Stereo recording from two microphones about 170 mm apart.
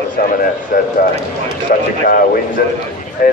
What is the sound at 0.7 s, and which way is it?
Speech, 55° left (ahead or behind).